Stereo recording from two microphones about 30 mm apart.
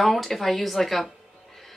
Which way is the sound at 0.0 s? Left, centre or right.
Centre.